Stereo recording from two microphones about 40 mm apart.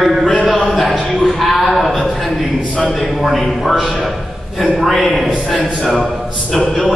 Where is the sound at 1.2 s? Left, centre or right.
Centre.